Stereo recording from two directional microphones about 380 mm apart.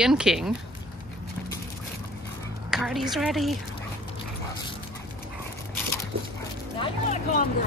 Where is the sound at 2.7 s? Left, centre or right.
Centre.